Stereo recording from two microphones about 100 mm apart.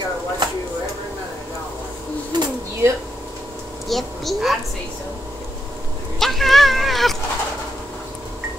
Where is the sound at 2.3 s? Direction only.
45° right (ahead or behind).